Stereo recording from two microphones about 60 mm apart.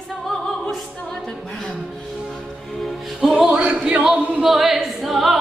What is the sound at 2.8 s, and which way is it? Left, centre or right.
Music, centre.